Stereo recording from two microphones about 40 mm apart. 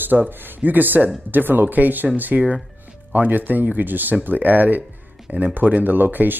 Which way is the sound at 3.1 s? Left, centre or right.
Right.